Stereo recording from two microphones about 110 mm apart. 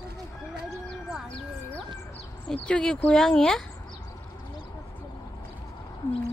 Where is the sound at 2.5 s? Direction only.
10° left (ahead or behind).